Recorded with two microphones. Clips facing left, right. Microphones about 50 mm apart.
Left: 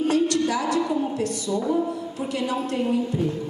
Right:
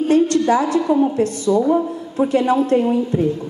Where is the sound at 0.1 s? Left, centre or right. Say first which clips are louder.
Right 7 dB; right.